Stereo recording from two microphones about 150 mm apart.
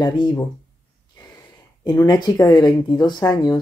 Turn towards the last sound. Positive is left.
turn(degrees=25)  # may be behind; listen again after turning